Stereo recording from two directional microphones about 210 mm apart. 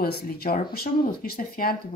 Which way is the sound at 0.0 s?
45° left (ahead or behind).